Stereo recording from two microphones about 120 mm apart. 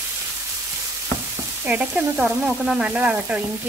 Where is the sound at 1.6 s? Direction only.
15° right (ahead or behind).